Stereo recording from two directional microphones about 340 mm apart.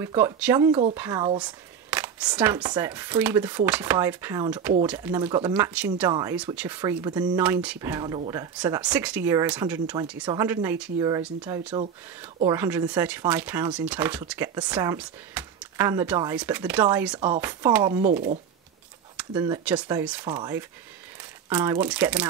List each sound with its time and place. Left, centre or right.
0.0 s speech: centre
18.1 s speech: right
19.1 s speech: centre